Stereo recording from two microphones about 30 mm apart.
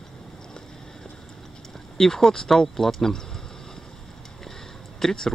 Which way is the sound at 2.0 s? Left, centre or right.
Centre.